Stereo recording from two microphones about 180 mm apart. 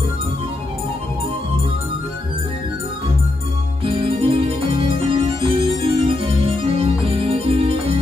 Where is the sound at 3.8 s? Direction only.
30° right (ahead or behind).